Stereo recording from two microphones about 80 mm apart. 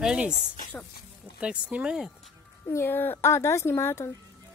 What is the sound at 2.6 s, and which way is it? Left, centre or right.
A woman's voice, left.